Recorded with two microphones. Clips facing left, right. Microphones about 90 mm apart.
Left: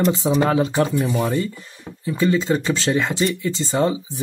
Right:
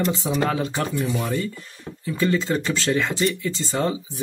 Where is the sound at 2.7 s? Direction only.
20° left (ahead or behind).